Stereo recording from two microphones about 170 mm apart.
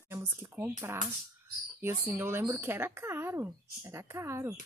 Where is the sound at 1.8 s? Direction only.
15° right (ahead or behind).